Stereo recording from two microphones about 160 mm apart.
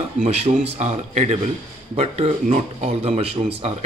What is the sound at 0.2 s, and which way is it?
Speech, 45° right (ahead or behind).